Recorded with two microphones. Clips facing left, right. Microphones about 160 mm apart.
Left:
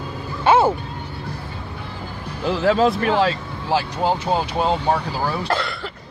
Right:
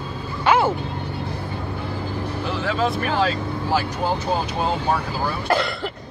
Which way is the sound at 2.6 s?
35° left (ahead or behind).